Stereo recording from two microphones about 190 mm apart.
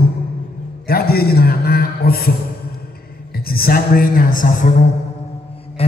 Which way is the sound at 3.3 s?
50° left (ahead or behind).